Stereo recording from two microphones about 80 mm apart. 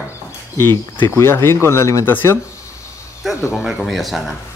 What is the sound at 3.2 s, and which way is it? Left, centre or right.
Speech, centre.